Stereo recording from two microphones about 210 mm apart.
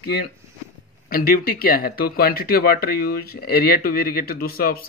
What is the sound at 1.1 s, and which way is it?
Speech, 45° left (ahead or behind).